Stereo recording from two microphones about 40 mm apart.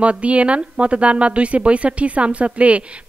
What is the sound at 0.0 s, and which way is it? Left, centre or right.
Speech, right.